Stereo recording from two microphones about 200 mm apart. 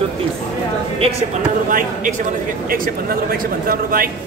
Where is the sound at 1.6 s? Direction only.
45° right (ahead or behind).